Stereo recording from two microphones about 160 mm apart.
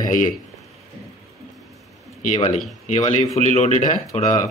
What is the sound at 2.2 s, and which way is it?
Speech, 50° left (ahead or behind).